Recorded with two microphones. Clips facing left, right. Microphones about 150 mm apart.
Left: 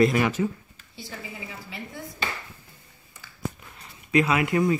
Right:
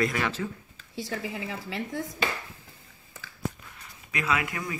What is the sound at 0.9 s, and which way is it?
A woman's voice, 90° right.